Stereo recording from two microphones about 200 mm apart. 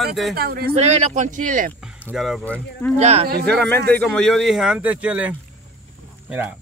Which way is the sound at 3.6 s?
10° left (ahead or behind).